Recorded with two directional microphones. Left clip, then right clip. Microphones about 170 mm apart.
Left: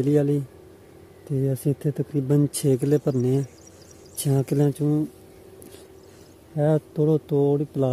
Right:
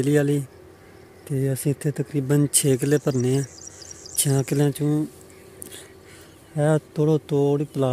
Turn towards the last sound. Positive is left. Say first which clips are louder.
# even
turn(degrees=10)  # may be behind; listen again after turning